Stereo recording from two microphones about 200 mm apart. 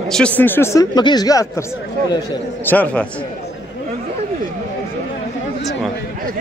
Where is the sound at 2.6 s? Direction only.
10° left (ahead or behind).